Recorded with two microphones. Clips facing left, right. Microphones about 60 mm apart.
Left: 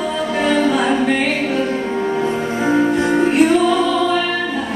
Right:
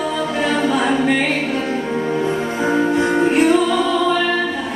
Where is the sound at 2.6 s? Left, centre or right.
Centre.